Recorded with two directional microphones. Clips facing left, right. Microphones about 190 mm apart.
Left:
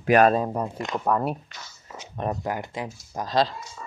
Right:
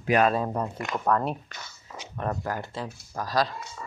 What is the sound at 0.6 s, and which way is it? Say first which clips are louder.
Speech: left 2 dB; 25° left (ahead or behind).